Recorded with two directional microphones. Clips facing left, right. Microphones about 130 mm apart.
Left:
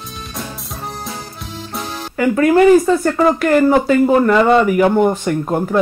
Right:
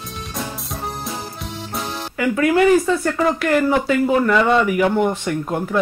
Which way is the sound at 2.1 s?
40° left (ahead or behind).